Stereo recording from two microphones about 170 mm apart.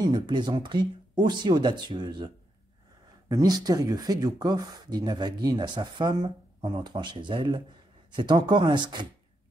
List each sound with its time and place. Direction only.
0.0 s speech: 25° right (ahead or behind)